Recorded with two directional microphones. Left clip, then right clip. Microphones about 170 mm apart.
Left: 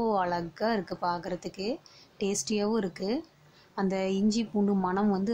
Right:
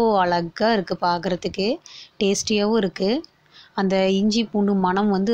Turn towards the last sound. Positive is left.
turn(degrees=-15)  # may be behind; listen again after turning